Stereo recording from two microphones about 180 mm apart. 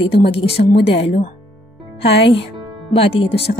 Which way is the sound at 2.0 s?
70° left (ahead or behind).